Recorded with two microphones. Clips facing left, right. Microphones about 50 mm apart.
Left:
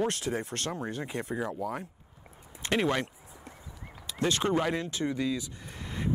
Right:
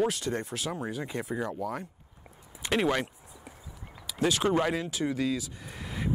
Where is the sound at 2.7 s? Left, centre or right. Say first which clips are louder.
Right 1 dB; centre.